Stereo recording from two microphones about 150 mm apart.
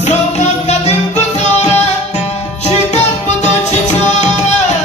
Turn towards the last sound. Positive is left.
turn(degrees=50)  # may be behind; listen again after turning